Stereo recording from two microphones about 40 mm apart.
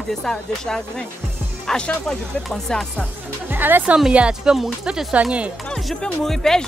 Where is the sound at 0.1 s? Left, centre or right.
Centre.